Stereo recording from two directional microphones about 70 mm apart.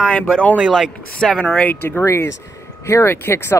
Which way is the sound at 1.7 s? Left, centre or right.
Left.